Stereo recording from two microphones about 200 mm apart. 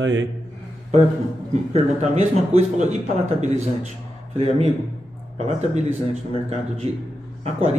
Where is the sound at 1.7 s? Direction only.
35° right (ahead or behind).